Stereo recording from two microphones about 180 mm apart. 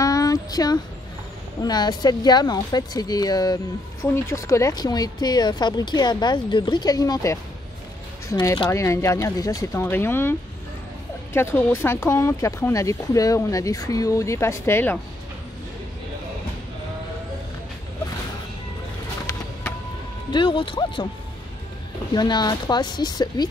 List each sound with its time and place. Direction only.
0.0 s a sound: 20° left (ahead or behind)
1.6 s speech: 20° left (ahead or behind)
11.3 s speech: 15° left (ahead or behind)
20.2 s speech: 25° left (ahead or behind)
22.1 s speech: 25° left (ahead or behind)